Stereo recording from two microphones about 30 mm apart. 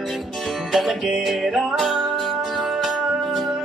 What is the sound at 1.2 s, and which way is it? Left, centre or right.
Music, centre.